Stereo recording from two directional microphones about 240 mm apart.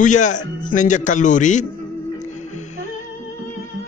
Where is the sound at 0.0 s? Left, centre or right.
Left.